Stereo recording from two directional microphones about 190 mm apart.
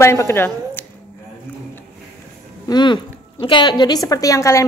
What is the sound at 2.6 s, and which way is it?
A woman's voice, 25° left (ahead or behind).